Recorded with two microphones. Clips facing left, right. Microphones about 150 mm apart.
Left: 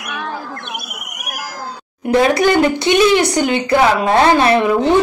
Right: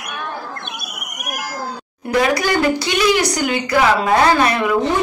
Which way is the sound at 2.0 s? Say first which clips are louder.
Left 4 dB; 25° left (ahead or behind).